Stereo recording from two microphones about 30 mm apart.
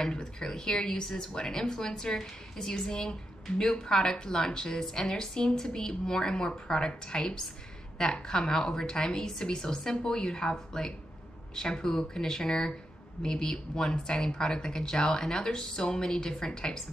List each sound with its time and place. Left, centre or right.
0.4 s speech: left